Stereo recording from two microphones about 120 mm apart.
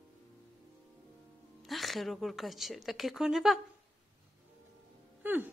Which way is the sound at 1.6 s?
Centre (ahead or behind).